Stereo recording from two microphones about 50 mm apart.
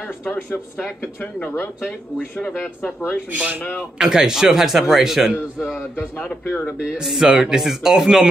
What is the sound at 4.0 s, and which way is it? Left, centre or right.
A man's voice, centre.